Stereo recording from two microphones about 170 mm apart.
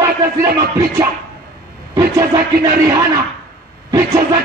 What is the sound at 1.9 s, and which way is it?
A man's voice, 15° right (ahead or behind).